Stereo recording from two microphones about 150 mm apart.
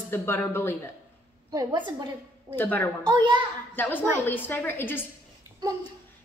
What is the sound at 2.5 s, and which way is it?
Speech, 15° left (ahead or behind).